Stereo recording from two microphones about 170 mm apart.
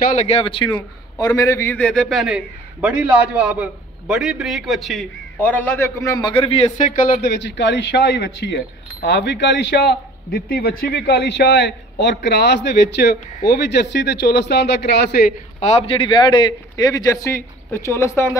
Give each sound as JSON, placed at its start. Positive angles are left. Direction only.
{"t": 0.0, "sound": "a man's voice", "side_deg": 45}
{"t": 5.4, "sound": "a man's voice", "side_deg": 10}
{"t": 6.3, "sound": "a man's voice", "side_deg": 35}
{"t": 7.4, "sound": "speech", "side_deg": 90}
{"t": 15.6, "sound": "a man's voice", "side_deg": 40}